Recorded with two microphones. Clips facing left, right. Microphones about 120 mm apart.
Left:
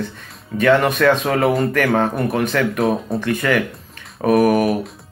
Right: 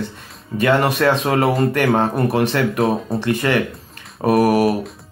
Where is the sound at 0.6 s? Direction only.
30° right (ahead or behind).